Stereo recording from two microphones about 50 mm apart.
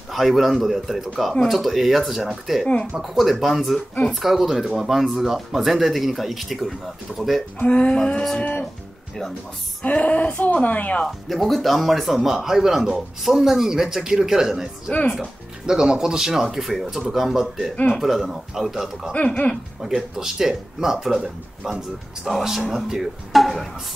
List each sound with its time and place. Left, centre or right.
0.1 s speech: centre
7.5 s speech: left
9.8 s speech: left
11.1 s speech: centre
19.1 s speech: left
19.5 s speech: centre